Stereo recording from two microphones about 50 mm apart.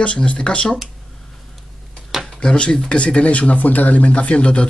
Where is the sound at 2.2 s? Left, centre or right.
Centre.